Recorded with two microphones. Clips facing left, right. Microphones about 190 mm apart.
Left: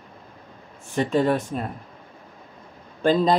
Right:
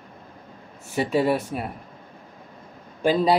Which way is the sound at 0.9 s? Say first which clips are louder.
Left 1 dB; 10° right (ahead or behind).